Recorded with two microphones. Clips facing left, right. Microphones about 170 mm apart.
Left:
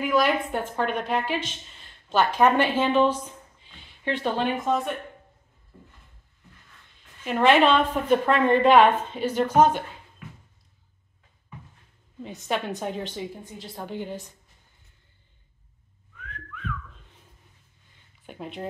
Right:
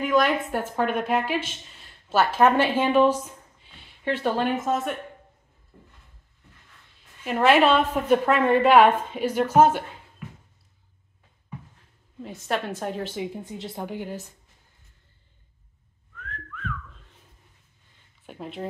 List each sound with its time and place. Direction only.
0.0 s a woman's voice: centre (ahead or behind)
7.2 s a woman's voice: 5° right (ahead or behind)
12.2 s a woman's voice: centre (ahead or behind)
13.6 s a woman's voice: 20° right (ahead or behind)
13.8 s a woman's voice: 10° right (ahead or behind)
16.2 s whistling: 5° left (ahead or behind)
18.2 s speech: centre (ahead or behind)